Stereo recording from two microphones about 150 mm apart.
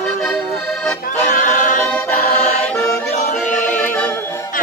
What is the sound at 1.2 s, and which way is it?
A capella, 60° left (ahead or behind).